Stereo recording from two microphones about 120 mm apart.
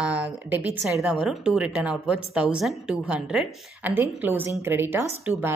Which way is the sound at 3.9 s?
20° right (ahead or behind).